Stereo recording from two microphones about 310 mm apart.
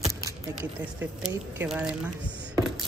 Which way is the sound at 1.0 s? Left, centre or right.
Centre.